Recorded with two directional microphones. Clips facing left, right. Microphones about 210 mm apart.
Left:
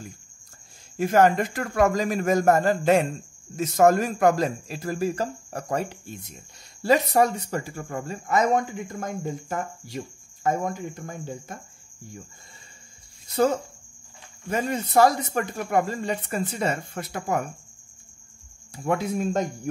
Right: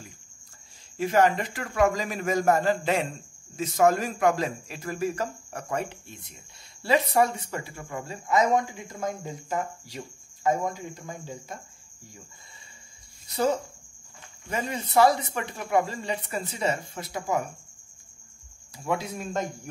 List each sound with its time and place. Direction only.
0.9 s a man's voice: 50° left (ahead or behind)
14.5 s speech: 45° left (ahead or behind)
18.9 s speech: 55° left (ahead or behind)